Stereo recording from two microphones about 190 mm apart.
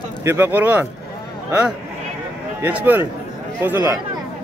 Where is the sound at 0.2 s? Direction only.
15° right (ahead or behind).